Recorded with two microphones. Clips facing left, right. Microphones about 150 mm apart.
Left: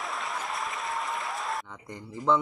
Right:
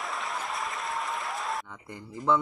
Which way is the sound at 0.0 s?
Centre (ahead or behind).